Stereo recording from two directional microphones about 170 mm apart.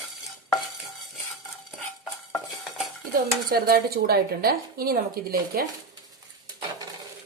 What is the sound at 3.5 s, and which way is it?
A woman's voice, 65° right (ahead or behind).